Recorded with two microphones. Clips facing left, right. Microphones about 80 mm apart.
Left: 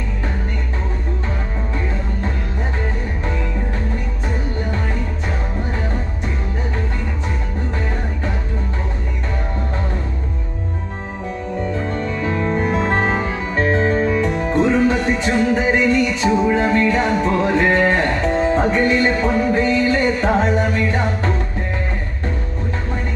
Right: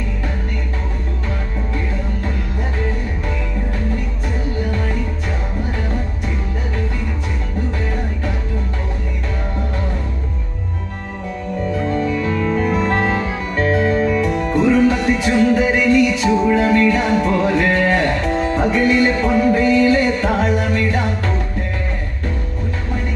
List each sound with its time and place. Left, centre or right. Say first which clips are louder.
12.2 s music: right 1 dB; centre
12.6 s music: even; left
13.1 s music: even; centre
14.5 s music: right 1 dB; left
14.8 s music: right 2 dB; centre